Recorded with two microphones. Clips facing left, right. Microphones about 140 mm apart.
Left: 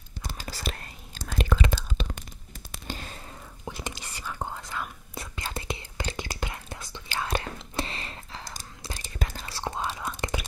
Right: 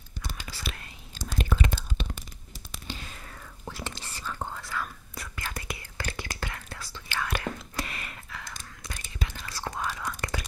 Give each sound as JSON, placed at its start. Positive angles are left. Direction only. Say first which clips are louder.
{"t": 0.4, "sound": "whispering", "louder": "left 7 dB", "side_deg": 40}
{"t": 1.4, "sound": "whispering", "louder": "left 3 dB", "side_deg": 90}
{"t": 2.9, "sound": "whispering", "louder": "left 3 dB", "side_deg": 50}
{"t": 3.6, "sound": "whispering", "louder": "left 1 dB", "side_deg": 15}